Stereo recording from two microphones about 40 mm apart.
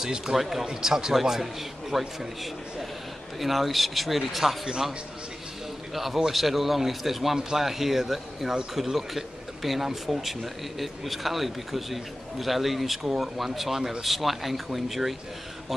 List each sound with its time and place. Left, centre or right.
0.0 s a man's voice: centre
5.9 s a man's voice: centre